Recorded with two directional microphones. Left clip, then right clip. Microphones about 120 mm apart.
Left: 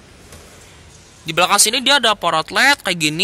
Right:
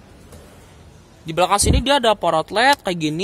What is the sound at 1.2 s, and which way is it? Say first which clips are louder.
Speech: left 3 dB; 15° right (ahead or behind).